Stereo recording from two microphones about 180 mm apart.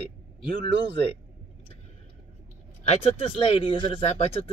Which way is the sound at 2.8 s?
35° left (ahead or behind).